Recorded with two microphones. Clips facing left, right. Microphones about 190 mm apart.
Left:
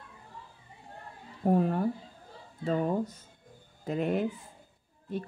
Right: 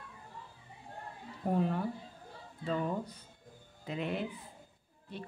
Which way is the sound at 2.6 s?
45° left (ahead or behind).